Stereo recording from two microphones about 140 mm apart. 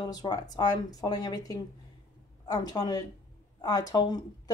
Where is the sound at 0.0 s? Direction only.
30° left (ahead or behind).